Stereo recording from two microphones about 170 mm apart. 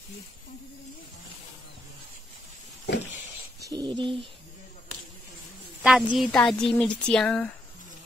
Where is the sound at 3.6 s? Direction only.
25° right (ahead or behind).